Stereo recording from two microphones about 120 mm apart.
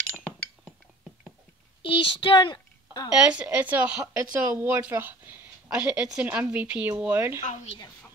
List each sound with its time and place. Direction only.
0.1 s chink: 10° left (ahead or behind)
1.8 s a woman's voice: 45° left (ahead or behind)
3.3 s speech: 10° right (ahead or behind)
7.4 s a woman's voice: 60° left (ahead or behind)